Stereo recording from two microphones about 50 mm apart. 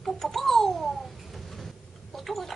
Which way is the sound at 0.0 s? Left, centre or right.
Centre.